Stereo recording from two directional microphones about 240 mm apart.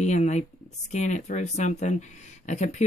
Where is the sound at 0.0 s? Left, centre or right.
Left.